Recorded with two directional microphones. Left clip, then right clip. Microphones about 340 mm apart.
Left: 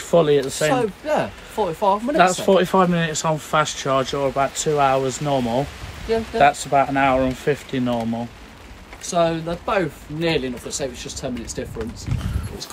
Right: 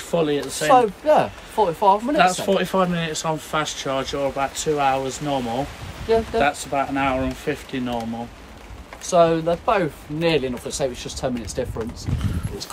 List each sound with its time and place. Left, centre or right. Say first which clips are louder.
0.1 s speech: left 5 dB; centre
0.7 s speech: right 5 dB; centre
2.1 s speech: left 2 dB; centre
9.0 s speech: right 4 dB; centre